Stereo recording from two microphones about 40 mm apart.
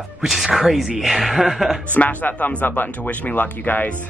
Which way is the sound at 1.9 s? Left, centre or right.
Left.